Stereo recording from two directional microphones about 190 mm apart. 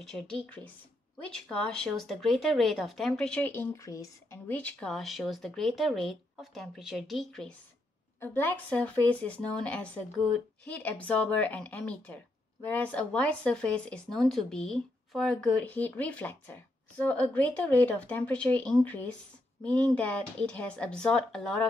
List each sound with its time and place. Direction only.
0.0 s speech: centre (ahead or behind)